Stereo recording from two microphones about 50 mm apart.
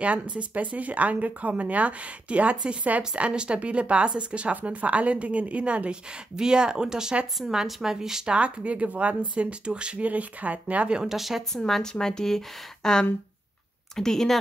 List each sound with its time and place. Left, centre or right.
0.0 s a woman's voice: right; by 8.4 s centre
8.4 s speech: right
11.0 s speech: centre
11.5 s speech: centre